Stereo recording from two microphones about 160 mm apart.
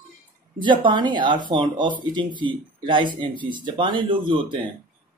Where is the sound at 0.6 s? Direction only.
30° right (ahead or behind).